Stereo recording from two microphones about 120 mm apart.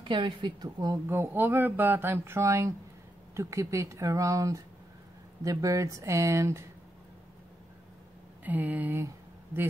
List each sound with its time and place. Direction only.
0.0 s a woman's voice: 40° right (ahead or behind)
1.0 s speech: 20° right (ahead or behind)
8.5 s a sound: 15° right (ahead or behind)